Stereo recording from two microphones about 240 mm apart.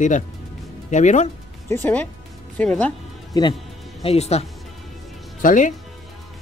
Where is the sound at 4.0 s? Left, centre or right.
Left.